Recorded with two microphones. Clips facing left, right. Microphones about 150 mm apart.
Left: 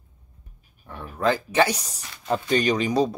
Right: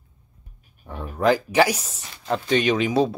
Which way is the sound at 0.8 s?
15° right (ahead or behind).